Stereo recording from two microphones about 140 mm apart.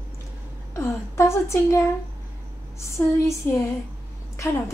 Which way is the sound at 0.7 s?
20° left (ahead or behind).